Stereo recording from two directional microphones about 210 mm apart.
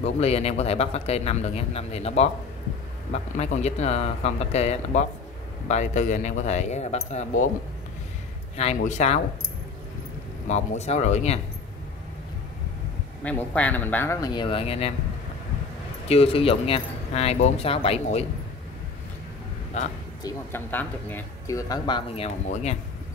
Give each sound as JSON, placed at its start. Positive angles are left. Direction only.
{"t": 0.0, "sound": "speech", "side_deg": 30}
{"t": 8.5, "sound": "speech", "side_deg": 30}
{"t": 10.5, "sound": "speech", "side_deg": 30}
{"t": 13.2, "sound": "speech", "side_deg": 5}
{"t": 16.1, "sound": "speech", "side_deg": 30}
{"t": 20.2, "sound": "speech", "side_deg": 10}